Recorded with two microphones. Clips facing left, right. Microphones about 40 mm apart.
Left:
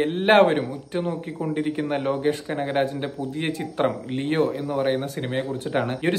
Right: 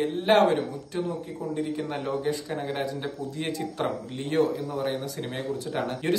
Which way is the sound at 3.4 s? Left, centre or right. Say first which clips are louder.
Left 5 dB; left.